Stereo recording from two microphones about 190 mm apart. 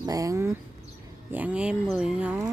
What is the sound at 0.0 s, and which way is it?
Speech, 20° right (ahead or behind).